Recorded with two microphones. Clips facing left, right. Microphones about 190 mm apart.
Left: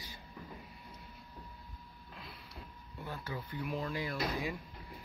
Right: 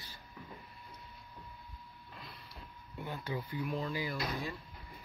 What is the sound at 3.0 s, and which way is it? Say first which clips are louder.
Speech: right 3 dB; 20° right (ahead or behind).